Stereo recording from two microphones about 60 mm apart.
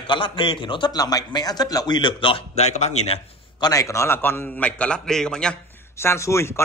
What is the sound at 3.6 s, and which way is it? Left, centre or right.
Speech, left.